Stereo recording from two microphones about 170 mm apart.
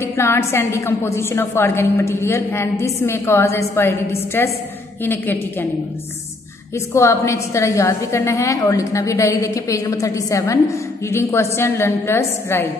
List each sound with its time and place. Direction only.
0.0 s a woman's voice: 15° left (ahead or behind)
6.9 s a woman's voice: 15° left (ahead or behind)